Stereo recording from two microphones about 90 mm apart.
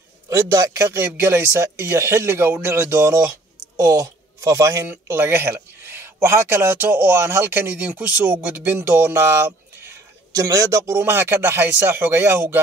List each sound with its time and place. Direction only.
0.3 s speech: 35° right (ahead or behind)
10.3 s speech: 40° right (ahead or behind)